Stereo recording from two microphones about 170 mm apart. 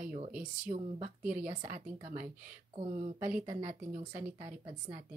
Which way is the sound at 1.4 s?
45° right (ahead or behind).